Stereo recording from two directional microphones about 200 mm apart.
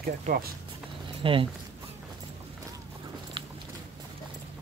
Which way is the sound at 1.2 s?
25° right (ahead or behind).